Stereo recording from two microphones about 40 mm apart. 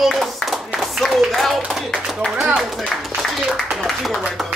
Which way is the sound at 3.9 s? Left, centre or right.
Centre.